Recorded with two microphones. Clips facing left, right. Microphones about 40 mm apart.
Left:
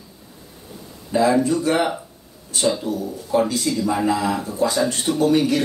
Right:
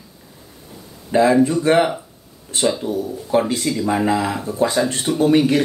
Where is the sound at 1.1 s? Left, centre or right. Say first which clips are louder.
Right 3 dB; right.